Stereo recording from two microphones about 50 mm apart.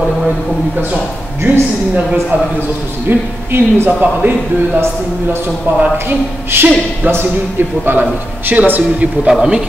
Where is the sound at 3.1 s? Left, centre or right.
Right.